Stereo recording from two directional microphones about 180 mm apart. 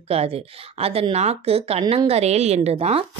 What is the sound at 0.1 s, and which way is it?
Speech, 35° right (ahead or behind).